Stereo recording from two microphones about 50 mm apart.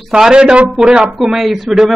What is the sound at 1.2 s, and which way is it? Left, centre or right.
Speech, centre.